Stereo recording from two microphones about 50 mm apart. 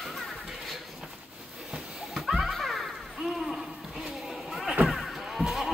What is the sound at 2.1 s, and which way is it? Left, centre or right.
Music, centre.